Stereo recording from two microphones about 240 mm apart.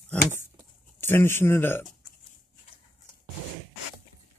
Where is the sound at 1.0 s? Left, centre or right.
Centre.